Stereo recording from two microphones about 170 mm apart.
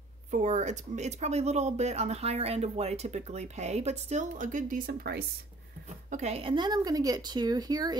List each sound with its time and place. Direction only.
0.3 s speech: 45° right (ahead or behind); by 5.2 s 60° right (ahead or behind)
6.0 s speech: 40° right (ahead or behind); by 8.0 s 25° right (ahead or behind)